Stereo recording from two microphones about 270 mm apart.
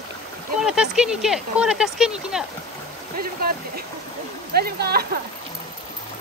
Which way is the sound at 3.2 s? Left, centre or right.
Right.